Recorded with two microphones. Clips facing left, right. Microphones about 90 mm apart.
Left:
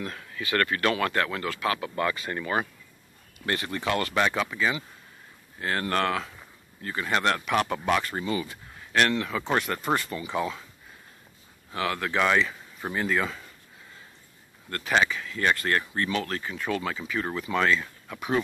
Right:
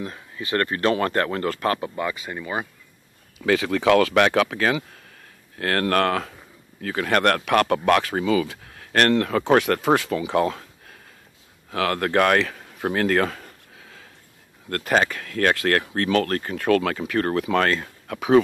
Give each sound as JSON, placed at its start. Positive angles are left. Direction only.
{"t": 0.0, "sound": "speech", "side_deg": -20}
{"t": 2.0, "sound": "speech", "side_deg": -10}
{"t": 3.4, "sound": "speech", "side_deg": -90}
{"t": 6.8, "sound": "speech", "side_deg": -80}
{"t": 11.7, "sound": "speech", "side_deg": -60}
{"t": 13.7, "sound": "a sound", "side_deg": -90}
{"t": 14.7, "sound": "speech", "side_deg": -50}